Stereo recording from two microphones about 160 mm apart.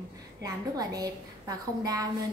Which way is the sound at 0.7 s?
20° right (ahead or behind).